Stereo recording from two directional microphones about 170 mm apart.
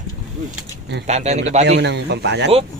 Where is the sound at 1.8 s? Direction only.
90° right.